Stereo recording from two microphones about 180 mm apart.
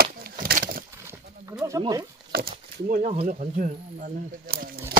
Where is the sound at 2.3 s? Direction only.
60° right (ahead or behind).